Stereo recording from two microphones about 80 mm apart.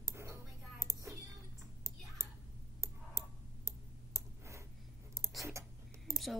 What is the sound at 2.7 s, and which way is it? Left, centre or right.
Clicking, right.